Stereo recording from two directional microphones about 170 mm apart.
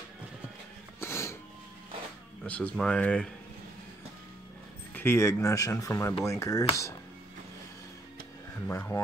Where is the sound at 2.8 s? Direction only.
5° left (ahead or behind).